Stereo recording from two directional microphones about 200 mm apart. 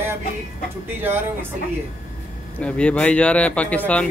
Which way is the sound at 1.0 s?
10° right (ahead or behind).